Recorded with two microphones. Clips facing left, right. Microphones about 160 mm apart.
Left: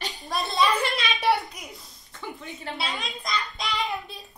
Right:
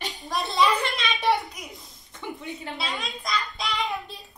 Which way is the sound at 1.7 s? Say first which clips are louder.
Right 1 dB; 20° right (ahead or behind).